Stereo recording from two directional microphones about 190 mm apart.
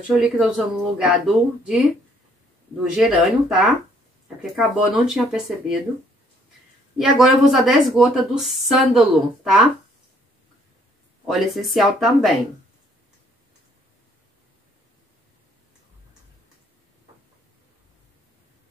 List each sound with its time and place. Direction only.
0.1 s a woman's voice: 5° right (ahead or behind)
3.0 s a woman's voice: centre (ahead or behind)
7.0 s a woman's voice: centre (ahead or behind)
11.2 s a woman's voice: centre (ahead or behind)